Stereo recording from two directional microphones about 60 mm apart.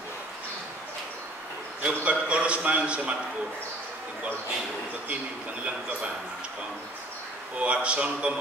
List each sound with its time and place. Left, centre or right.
1.8 s a man's voice: centre
5.6 s a man's voice: centre
7.5 s a man's voice: right